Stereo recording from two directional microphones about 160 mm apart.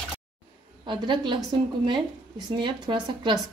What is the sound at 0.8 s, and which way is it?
A woman's voice, 30° right (ahead or behind).